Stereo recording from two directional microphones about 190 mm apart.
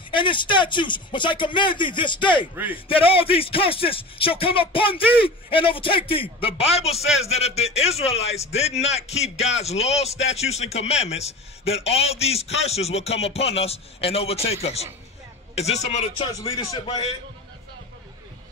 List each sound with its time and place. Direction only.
0.1 s a man's voice: 25° left (ahead or behind)